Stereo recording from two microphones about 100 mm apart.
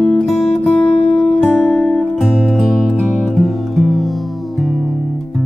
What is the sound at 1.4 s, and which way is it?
Music, 15° left (ahead or behind).